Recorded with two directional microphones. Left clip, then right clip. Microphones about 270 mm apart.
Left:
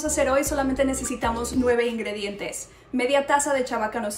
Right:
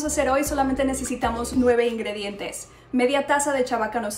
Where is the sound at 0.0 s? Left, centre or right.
Centre.